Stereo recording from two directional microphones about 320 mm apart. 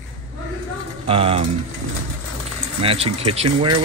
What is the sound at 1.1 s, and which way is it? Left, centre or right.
Speech, centre.